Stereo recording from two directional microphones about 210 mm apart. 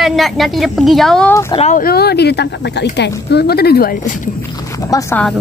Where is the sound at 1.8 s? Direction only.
50° left (ahead or behind).